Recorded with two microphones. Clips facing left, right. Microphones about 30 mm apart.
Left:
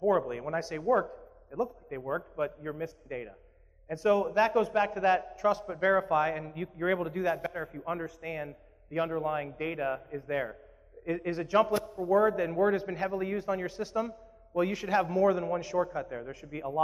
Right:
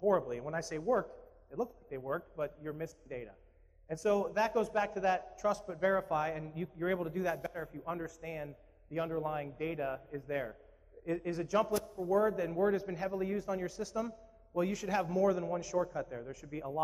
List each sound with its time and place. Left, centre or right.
0.0 s a man's voice: left